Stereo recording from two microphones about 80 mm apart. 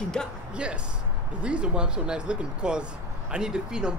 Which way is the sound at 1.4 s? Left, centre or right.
Centre.